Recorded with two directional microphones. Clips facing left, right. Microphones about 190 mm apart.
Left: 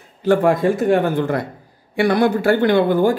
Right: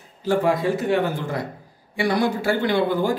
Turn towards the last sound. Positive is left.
turn(degrees=55)  # may be behind; listen again after turning